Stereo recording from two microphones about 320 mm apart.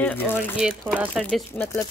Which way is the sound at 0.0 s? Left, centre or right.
Centre.